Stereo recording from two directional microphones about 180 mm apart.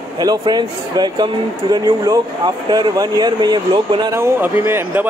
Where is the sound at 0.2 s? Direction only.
20° right (ahead or behind).